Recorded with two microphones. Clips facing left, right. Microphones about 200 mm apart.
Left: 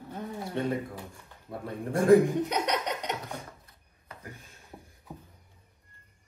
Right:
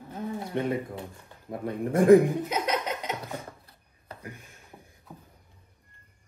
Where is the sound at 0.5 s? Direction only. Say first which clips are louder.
Right 1 dB; 15° right (ahead or behind).